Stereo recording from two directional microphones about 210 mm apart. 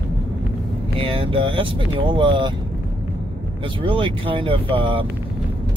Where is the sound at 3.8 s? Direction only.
25° right (ahead or behind).